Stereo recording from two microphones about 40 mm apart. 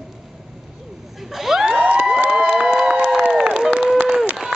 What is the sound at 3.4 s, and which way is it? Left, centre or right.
Crowd, centre.